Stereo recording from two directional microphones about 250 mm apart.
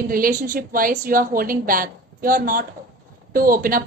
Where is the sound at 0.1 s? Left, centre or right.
Right.